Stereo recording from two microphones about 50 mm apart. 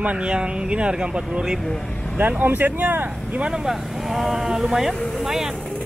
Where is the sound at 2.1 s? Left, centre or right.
Right.